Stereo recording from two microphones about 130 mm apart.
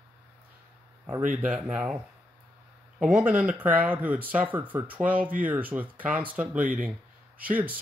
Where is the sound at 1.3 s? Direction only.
10° right (ahead or behind).